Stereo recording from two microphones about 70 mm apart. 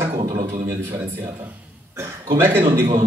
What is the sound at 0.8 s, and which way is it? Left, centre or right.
A man's voice, right.